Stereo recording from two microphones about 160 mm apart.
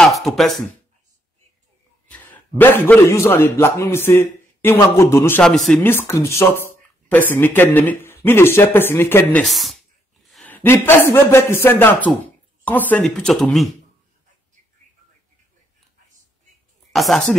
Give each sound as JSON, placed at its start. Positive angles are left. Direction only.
{"t": 0.0, "sound": "a sound", "side_deg": 0}
{"t": 2.0, "sound": "a man's voice", "side_deg": 10}
{"t": 5.4, "sound": "speech", "side_deg": 5}
{"t": 5.8, "sound": "speech", "side_deg": 15}
{"t": 9.4, "sound": "speech", "side_deg": 0}
{"t": 10.2, "sound": "a sound", "side_deg": 0}
{"t": 10.5, "sound": "speech", "side_deg": 15}
{"t": 16.9, "sound": "speech", "side_deg": 0}